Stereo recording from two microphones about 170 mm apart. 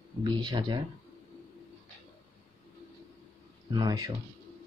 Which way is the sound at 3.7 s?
25° right (ahead or behind).